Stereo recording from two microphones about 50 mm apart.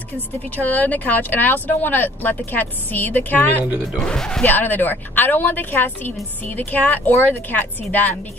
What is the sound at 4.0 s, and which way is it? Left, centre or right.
Speech, centre.